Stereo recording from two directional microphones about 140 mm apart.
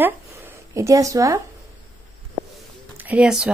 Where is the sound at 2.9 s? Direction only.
10° right (ahead or behind).